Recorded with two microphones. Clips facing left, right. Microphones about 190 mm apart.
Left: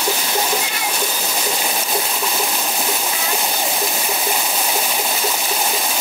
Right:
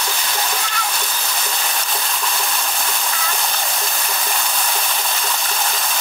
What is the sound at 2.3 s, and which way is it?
Stream, 20° left (ahead or behind).